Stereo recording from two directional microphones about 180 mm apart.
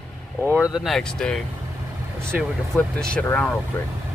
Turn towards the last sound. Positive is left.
turn(degrees=5)  # may be behind; listen again after turning